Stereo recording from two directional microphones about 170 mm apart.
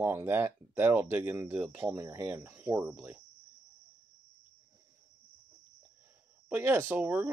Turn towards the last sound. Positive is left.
turn(degrees=-10)  # may be behind; listen again after turning